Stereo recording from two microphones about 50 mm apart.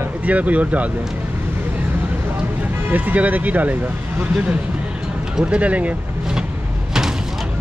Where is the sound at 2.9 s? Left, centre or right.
Right.